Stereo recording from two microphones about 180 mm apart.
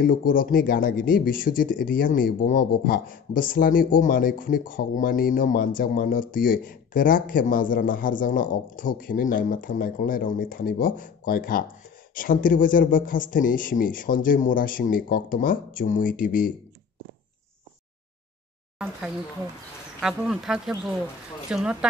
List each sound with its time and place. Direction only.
0.0 s speech: 50° left (ahead or behind)
20.0 s speech: 5° right (ahead or behind)